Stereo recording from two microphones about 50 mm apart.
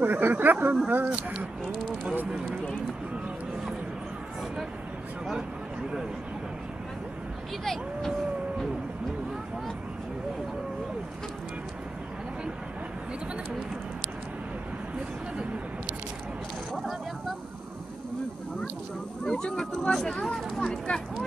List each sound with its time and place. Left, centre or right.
0.0 s speech: right
1.1 s speech: right
7.6 s speech: centre
19.2 s a sound: centre
20.5 s speech: centre